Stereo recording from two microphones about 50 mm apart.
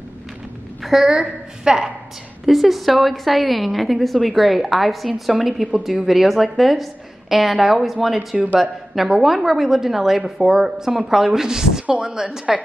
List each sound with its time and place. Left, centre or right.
0.9 s a woman's voice: centre
11.8 s a woman's voice: right